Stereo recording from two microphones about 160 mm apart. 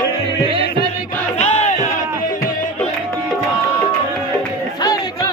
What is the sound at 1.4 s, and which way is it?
Music, 45° left (ahead or behind).